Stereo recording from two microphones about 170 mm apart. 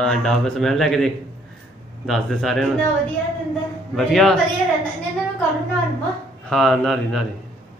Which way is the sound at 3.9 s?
Centre (ahead or behind).